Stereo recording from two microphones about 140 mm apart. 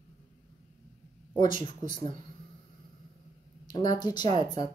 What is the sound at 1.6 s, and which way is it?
Speech, 35° left (ahead or behind).